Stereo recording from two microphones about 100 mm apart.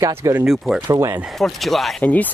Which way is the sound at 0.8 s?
35° right (ahead or behind).